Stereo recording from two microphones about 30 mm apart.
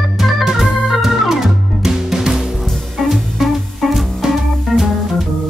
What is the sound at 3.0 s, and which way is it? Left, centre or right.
Music, centre.